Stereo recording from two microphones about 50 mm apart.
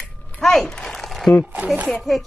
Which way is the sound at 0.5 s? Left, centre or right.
Centre.